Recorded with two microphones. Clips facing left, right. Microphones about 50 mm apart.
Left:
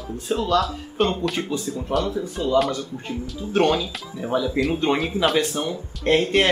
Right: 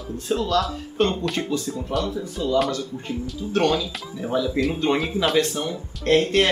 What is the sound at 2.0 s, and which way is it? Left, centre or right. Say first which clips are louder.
Speech: left 1 dB; centre.